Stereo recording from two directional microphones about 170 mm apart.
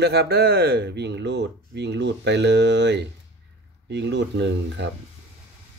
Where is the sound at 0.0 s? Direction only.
75° right (ahead or behind).